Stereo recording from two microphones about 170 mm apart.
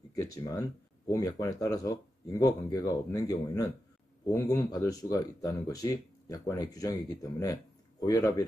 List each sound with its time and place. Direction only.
0.1 s speech: 20° left (ahead or behind)